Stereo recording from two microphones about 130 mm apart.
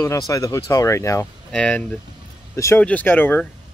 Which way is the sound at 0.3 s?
25° left (ahead or behind).